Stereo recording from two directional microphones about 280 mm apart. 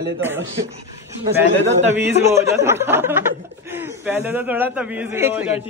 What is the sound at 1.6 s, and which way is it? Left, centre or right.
Speech, right.